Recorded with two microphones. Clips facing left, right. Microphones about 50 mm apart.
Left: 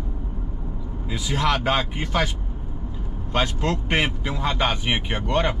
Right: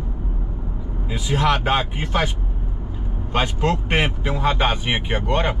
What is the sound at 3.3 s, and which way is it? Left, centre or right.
Speech, right.